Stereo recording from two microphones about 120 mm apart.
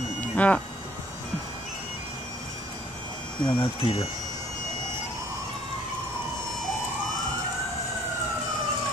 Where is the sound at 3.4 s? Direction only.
50° left (ahead or behind).